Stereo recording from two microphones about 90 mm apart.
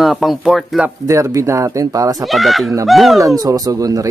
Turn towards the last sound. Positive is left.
turn(degrees=-40)  # may be behind; listen again after turning